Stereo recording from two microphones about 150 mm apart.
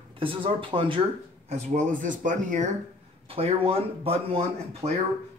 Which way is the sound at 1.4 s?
50° right (ahead or behind).